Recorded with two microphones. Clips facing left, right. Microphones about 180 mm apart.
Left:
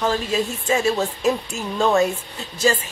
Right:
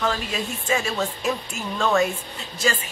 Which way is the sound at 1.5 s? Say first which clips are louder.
Left 3 dB; 30° left (ahead or behind).